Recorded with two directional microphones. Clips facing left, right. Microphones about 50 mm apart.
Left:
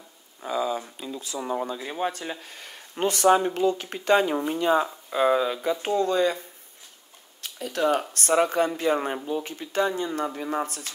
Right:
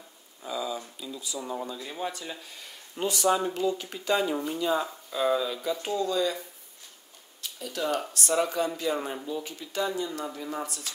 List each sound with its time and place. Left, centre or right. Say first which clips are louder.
0.4 s speech: left 6 dB; left
7.4 s a sound: left 6 dB; left
8.1 s speech: left 5 dB; left